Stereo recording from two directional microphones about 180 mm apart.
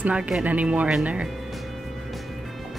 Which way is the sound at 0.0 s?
5° right (ahead or behind).